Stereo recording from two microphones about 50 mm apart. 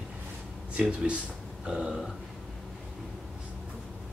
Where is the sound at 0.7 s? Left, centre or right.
Right.